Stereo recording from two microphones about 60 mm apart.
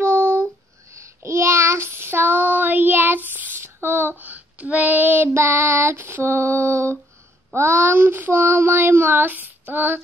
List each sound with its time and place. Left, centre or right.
0.0 s a sound: right
1.2 s child singing: right
3.5 s child singing: right
5.3 s female singing: right
7.5 s child singing: right